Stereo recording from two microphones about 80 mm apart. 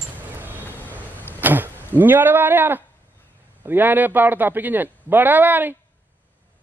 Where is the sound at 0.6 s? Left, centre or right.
Left.